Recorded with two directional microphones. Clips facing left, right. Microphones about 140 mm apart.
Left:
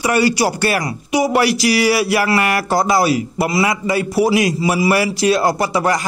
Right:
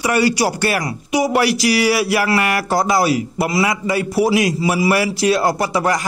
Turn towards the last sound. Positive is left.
turn(degrees=25)  # may be behind; listen again after turning